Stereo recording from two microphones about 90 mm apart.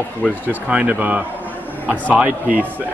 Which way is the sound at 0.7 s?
15° right (ahead or behind).